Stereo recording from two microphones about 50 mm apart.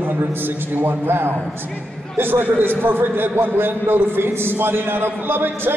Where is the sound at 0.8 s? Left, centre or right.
Right.